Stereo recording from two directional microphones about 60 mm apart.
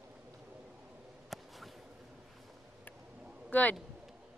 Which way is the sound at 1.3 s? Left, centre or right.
Centre.